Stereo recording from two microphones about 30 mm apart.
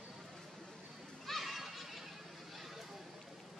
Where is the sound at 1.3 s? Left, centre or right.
Centre.